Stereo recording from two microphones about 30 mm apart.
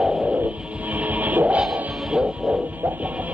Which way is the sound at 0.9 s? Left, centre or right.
Right.